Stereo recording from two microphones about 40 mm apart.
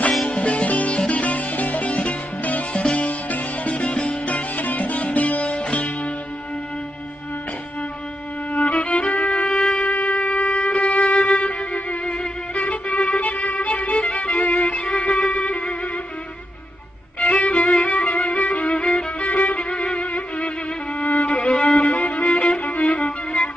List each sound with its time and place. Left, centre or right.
0.3 s music: left
2.7 s music: left
3.1 s music: left
8.5 s music: left
12.5 s violin: left
17.2 s violin: left
19.3 s violin: left
21.0 s music: left
23.0 s violin: left